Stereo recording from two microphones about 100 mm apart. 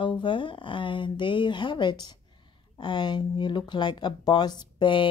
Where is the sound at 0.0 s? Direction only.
55° left (ahead or behind).